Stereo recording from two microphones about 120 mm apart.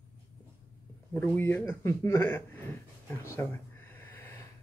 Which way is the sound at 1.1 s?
15° left (ahead or behind).